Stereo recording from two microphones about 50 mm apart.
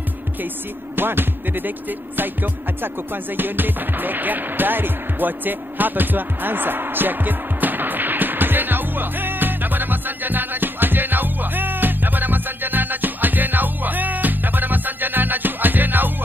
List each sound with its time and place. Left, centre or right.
0.9 s music: right